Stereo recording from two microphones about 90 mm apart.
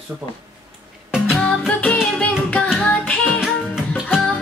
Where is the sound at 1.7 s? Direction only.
15° left (ahead or behind).